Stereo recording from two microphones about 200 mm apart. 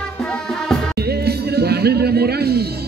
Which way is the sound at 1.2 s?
55° right (ahead or behind).